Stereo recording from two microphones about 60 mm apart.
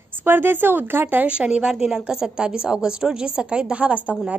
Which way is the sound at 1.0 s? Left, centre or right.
Right.